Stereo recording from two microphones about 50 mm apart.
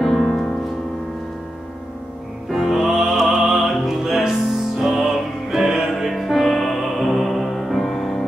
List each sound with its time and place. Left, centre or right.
0.0 s music: centre
2.5 s music: centre